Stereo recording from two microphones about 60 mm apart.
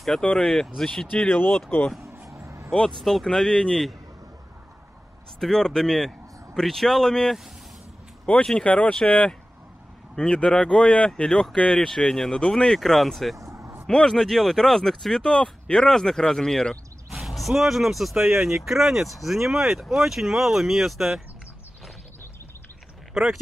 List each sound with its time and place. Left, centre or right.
0.2 s speech: centre
1.3 s speech: left
2.4 s vehicle: right
2.7 s speech: centre
5.4 s speech: centre
8.6 s speech: left; by 13.4 s centre
13.4 s a sound: right
13.8 s speech: centre
17.1 s speech: centre
23.2 s speech: centre